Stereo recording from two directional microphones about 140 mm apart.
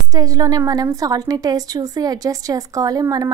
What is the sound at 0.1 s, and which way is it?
A woman's voice, 25° right (ahead or behind).